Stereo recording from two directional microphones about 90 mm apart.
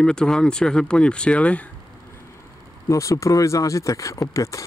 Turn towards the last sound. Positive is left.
turn(degrees=40)  # may be behind; listen again after turning